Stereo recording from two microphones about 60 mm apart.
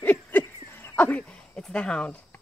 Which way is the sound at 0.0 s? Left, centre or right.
Left.